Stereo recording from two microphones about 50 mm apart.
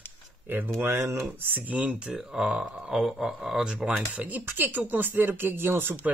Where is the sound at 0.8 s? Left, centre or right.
Right.